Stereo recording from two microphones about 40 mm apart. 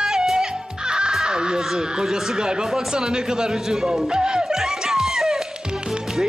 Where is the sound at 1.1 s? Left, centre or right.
Centre.